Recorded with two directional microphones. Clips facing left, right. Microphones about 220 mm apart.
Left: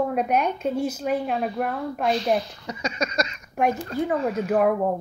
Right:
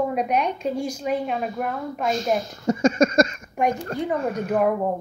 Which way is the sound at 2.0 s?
45° right (ahead or behind).